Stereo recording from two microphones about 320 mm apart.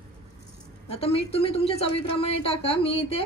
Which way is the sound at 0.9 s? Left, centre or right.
Centre.